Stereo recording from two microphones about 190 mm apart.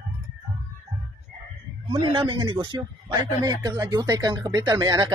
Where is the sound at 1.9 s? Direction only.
25° right (ahead or behind).